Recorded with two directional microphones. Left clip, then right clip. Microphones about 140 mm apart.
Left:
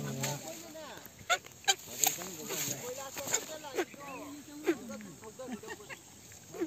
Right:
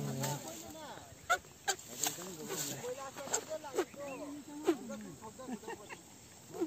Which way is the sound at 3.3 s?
30° right (ahead or behind).